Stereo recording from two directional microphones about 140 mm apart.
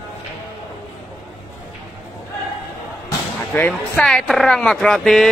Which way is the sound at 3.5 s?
15° left (ahead or behind).